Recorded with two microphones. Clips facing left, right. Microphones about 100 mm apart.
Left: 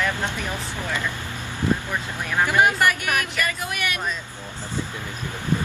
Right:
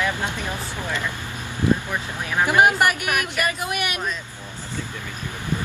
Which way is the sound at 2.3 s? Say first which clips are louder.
Right 2 dB; 15° right (ahead or behind).